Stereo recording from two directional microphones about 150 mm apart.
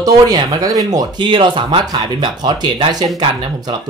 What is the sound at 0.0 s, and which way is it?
Speech, 25° right (ahead or behind).